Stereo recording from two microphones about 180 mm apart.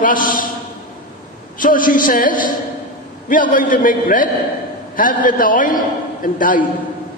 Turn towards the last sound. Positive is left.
turn(degrees=50)  # may be behind; listen again after turning